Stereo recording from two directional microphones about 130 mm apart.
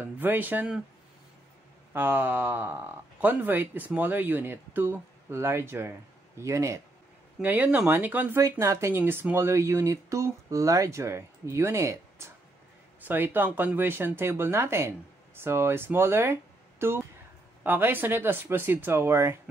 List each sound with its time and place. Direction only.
0.0 s speech: 15° right (ahead or behind)
2.0 s speech: 15° right (ahead or behind)
7.4 s speech: 15° right (ahead or behind)
8.4 s speech: 25° right (ahead or behind)